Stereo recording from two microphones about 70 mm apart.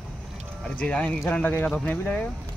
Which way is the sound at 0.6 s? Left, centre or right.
Centre.